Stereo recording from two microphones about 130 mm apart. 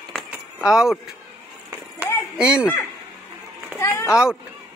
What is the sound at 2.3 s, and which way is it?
Speech, 5° right (ahead or behind).